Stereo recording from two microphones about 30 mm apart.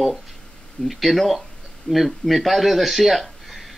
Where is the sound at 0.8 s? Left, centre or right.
Left.